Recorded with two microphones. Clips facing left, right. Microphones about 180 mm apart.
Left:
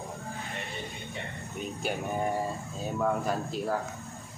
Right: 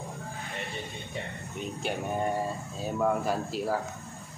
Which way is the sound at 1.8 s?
Centre (ahead or behind).